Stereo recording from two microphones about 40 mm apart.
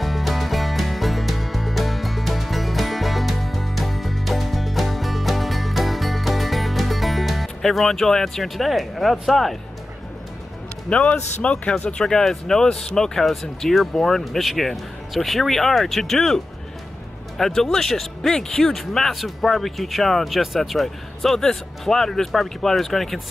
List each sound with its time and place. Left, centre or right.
0.0 s music: centre
10.9 s a man's voice: left
12.0 s speech: centre